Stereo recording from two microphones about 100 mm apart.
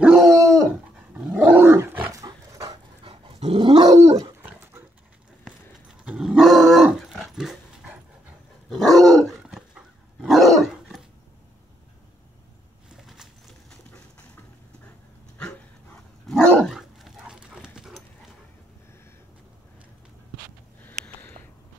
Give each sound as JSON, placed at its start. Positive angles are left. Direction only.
{"t": 0.0, "sound": "dog", "side_deg": -5}
{"t": 1.1, "sound": "dog", "side_deg": -10}
{"t": 1.6, "sound": "roar", "side_deg": -20}
{"t": 2.1, "sound": "roaring cats", "side_deg": -35}
{"t": 3.0, "sound": "dog", "side_deg": -65}
{"t": 3.8, "sound": "dog", "side_deg": -35}
{"t": 4.4, "sound": "dog", "side_deg": -15}
{"t": 6.0, "sound": "dog", "side_deg": -5}
{"t": 12.9, "sound": "a sound", "side_deg": -5}
{"t": 15.3, "sound": "dog", "side_deg": 15}
{"t": 16.7, "sound": "dog", "side_deg": -5}
{"t": 20.8, "sound": "a sound", "side_deg": 20}